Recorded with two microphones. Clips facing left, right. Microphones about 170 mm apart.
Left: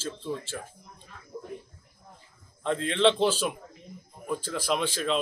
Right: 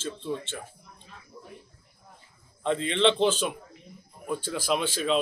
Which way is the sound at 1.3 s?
50° left (ahead or behind).